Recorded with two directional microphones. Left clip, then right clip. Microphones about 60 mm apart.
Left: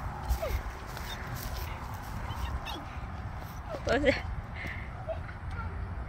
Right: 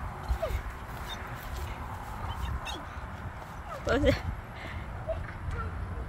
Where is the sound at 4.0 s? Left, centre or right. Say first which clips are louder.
Even; right.